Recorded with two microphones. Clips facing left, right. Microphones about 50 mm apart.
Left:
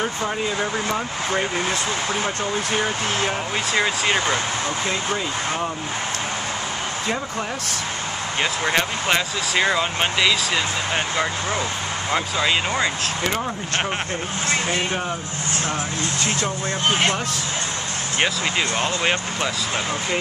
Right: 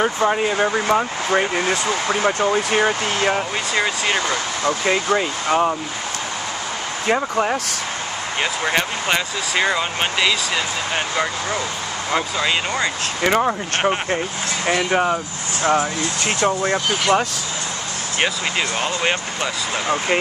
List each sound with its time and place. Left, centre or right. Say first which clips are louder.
0.0 s speech: right 6 dB; right
3.7 s speech: even; centre
4.6 s speech: right 5 dB; right
7.1 s speech: right 10 dB; right
8.4 s speech: right 1 dB; centre
12.1 s speech: right 1 dB; centre
13.2 s speech: right 9 dB; right
14.9 s speech: right 7 dB; right
16.8 s speech: left 2 dB; left
18.2 s speech: right 1 dB; centre